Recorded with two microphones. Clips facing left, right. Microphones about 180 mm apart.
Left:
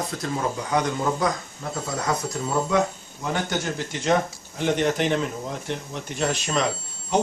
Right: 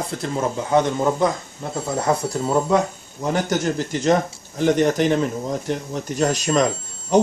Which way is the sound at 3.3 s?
40° right (ahead or behind).